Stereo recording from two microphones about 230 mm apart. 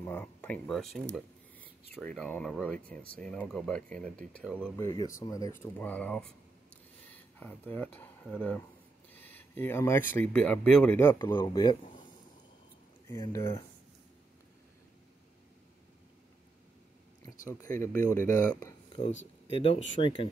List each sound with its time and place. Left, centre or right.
0.0 s speech: centre
4.8 s speech: centre
13.1 s speech: centre
17.7 s speech: centre
19.5 s speech: left